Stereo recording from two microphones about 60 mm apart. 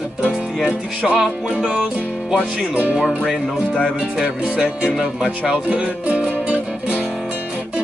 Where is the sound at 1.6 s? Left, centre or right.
Centre.